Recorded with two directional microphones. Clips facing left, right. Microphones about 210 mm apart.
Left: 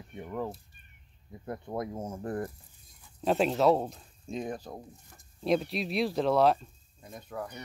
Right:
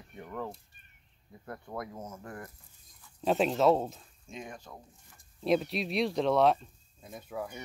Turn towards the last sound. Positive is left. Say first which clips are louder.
# even
turn(degrees=-5)  # may be behind; listen again after turning